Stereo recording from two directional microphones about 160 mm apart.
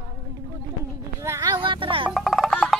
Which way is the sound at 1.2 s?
20° right (ahead or behind).